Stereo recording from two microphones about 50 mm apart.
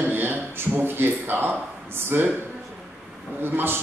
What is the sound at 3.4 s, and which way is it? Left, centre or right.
Speech, right.